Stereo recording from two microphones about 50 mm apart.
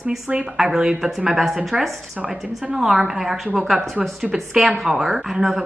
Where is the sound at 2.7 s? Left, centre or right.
Centre.